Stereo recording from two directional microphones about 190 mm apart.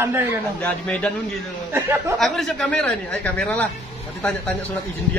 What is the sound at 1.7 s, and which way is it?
Speech, 10° right (ahead or behind).